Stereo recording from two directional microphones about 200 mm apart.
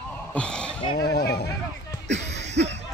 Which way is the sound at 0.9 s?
50° left (ahead or behind).